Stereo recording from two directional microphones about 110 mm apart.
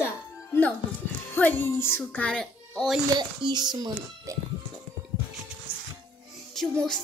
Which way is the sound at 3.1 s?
40° right (ahead or behind).